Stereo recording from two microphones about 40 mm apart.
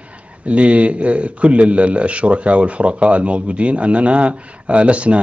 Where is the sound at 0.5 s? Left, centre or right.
Right.